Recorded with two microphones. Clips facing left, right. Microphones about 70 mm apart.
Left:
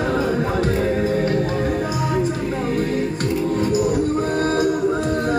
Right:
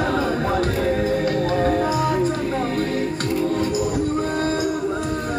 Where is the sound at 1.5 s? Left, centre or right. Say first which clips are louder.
Right 3 dB; centre.